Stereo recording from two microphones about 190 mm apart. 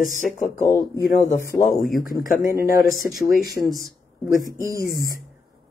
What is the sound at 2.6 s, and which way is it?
Speech, 50° left (ahead or behind).